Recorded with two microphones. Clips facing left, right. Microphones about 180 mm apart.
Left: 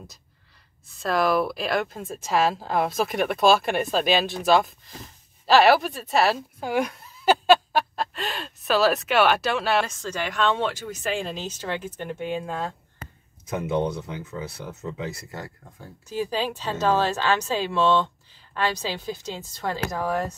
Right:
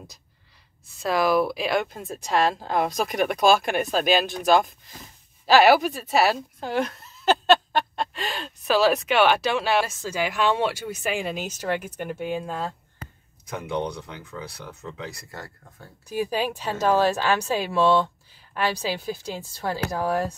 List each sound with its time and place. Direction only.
0.8 s speech: centre (ahead or behind)
6.6 s speech: 10° left (ahead or behind)
13.5 s speech: 20° left (ahead or behind)
16.1 s speech: 10° right (ahead or behind)